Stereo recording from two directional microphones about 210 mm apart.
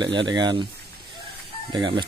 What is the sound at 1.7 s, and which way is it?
Speech, 20° right (ahead or behind).